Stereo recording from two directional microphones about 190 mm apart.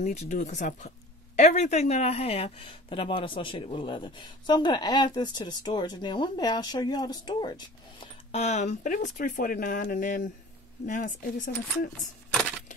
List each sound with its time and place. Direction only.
0.0 s speech: 35° left (ahead or behind)
12.3 s coin: 5° left (ahead or behind)